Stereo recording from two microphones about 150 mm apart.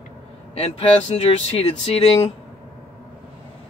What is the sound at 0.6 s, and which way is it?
Speech, 45° left (ahead or behind).